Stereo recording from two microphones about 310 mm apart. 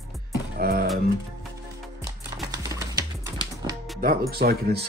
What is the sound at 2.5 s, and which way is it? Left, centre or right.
Typing, centre.